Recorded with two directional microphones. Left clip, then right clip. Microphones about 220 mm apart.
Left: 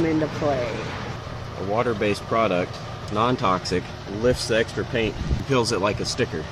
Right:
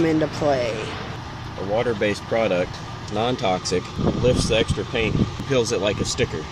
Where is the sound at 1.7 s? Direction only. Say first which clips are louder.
Right 1 dB; 40° left (ahead or behind).